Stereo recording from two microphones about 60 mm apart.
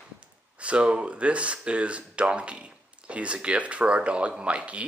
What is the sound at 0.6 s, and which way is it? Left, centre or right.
Speech, centre.